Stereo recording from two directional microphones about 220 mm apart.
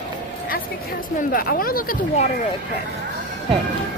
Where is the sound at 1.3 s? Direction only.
40° left (ahead or behind).